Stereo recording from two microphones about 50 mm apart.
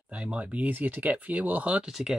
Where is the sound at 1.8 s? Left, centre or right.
Centre.